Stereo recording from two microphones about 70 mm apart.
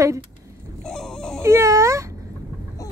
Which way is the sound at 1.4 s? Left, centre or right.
Right.